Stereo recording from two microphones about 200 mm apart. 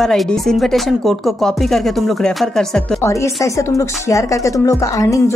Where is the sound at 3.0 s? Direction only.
15° left (ahead or behind).